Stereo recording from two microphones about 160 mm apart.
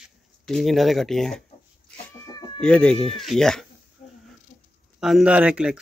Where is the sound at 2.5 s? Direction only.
5° left (ahead or behind).